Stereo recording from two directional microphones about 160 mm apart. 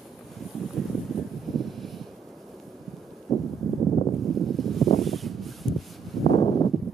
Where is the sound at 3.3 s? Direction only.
25° left (ahead or behind).